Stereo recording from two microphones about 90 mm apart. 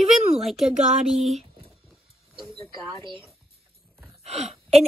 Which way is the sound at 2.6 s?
70° right (ahead or behind).